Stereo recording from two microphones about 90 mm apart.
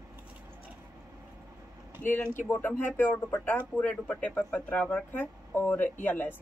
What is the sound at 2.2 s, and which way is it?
Speech, 20° left (ahead or behind).